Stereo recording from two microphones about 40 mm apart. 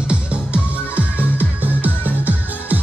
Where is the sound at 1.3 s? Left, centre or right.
Right.